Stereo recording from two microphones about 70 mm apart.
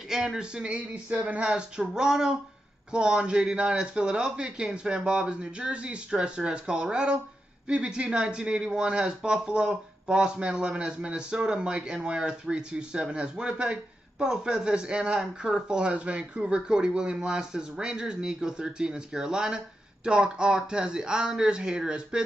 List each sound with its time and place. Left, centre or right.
0.1 s speech: centre